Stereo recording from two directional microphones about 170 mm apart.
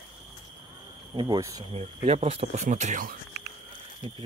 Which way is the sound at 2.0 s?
35° right (ahead or behind).